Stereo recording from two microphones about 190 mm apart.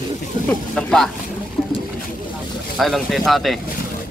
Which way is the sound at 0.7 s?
Centre (ahead or behind).